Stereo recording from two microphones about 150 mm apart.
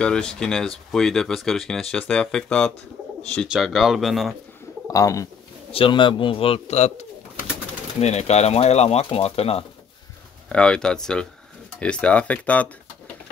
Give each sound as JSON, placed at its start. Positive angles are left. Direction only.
{"t": 0.0, "sound": "speech", "side_deg": 5}
{"t": 4.8, "sound": "speech", "side_deg": 20}
{"t": 5.7, "sound": "speech", "side_deg": 35}
{"t": 10.5, "sound": "speech", "side_deg": 5}